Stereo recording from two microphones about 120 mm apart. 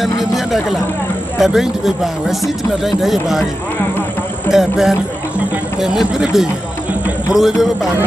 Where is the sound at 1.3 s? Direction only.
Centre (ahead or behind).